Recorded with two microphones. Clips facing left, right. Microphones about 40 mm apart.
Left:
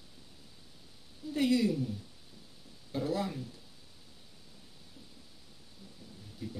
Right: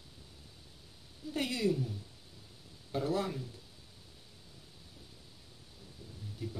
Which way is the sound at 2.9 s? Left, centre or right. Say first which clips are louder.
Even; right.